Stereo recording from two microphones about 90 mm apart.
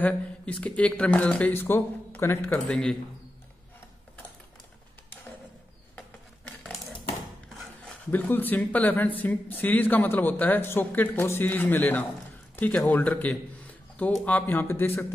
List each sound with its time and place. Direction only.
0.0 s speech: 15° left (ahead or behind)
2.5 s speech: 10° left (ahead or behind)
8.1 s speech: 20° left (ahead or behind)